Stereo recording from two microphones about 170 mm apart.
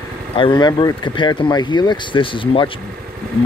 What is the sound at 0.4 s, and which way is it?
Speech, 25° left (ahead or behind).